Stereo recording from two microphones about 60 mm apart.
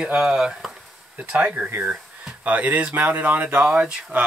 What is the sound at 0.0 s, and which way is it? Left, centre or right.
Speech, centre.